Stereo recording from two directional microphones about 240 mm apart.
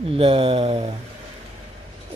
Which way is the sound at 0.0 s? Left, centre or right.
Right.